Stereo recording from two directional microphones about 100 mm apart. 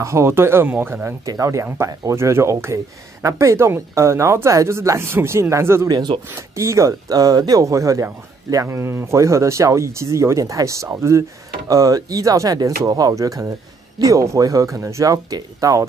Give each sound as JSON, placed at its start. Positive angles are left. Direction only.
{"t": 0.0, "sound": "speech", "side_deg": -30}
{"t": 1.2, "sound": "speech", "side_deg": -35}
{"t": 5.9, "sound": "speech", "side_deg": -45}
{"t": 6.2, "sound": "speech", "side_deg": -30}